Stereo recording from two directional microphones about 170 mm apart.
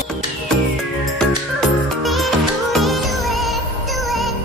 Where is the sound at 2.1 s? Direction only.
Centre (ahead or behind).